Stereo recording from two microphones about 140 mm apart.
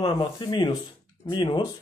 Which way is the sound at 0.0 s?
35° left (ahead or behind).